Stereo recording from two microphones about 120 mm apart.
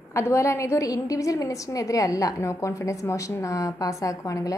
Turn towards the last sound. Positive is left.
turn(degrees=25)  # may be behind; listen again after turning